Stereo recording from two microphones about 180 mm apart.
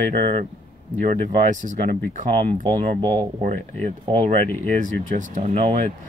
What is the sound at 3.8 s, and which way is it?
Speech, 35° right (ahead or behind).